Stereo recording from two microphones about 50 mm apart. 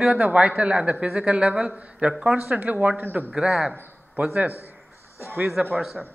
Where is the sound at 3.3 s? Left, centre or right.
Centre.